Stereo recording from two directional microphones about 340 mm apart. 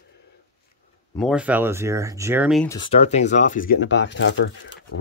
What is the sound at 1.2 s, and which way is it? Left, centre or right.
Speech, centre.